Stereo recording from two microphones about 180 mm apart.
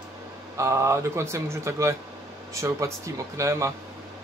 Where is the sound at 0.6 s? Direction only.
15° right (ahead or behind).